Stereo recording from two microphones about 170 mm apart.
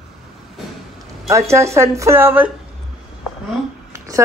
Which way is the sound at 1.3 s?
15° right (ahead or behind).